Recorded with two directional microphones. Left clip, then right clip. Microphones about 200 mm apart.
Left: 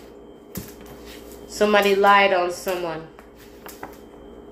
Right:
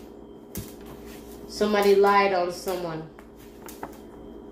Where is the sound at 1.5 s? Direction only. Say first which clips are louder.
Left 2 dB; 35° left (ahead or behind).